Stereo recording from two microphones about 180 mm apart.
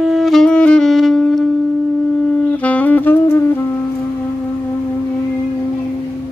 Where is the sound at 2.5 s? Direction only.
10° left (ahead or behind).